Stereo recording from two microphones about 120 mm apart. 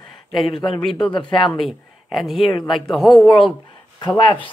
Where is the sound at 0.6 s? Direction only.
5° left (ahead or behind).